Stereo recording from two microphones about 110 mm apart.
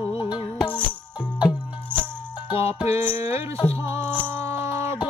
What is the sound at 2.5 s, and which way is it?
Music, 20° right (ahead or behind).